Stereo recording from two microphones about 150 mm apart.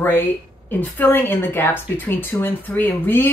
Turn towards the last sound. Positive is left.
turn(degrees=15)  # may be behind; listen again after turning